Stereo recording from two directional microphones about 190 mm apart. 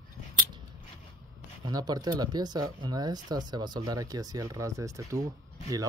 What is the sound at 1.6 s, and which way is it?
Speech, 20° right (ahead or behind).